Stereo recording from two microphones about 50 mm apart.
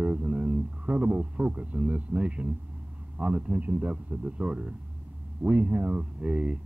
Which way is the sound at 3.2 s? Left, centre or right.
Right.